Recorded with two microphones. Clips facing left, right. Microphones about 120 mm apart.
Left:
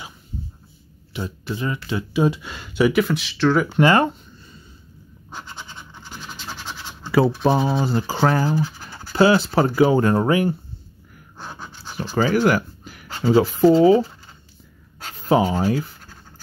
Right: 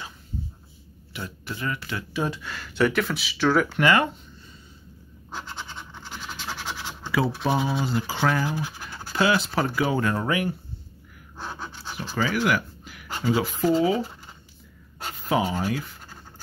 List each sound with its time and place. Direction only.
1.1 s speech: 20° left (ahead or behind); by 3.6 s 5° right (ahead or behind)
3.7 s speech: 35° left (ahead or behind)
6.3 s scratch: 5° right (ahead or behind)
7.4 s speech: 40° left (ahead or behind)
11.3 s pant: 5° left (ahead or behind)
12.0 s a sound: 40° left (ahead or behind)
13.2 s speech: 40° left (ahead or behind)
15.2 s speech: 35° left (ahead or behind)